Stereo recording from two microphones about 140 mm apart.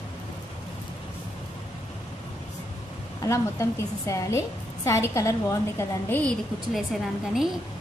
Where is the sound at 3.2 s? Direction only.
20° left (ahead or behind).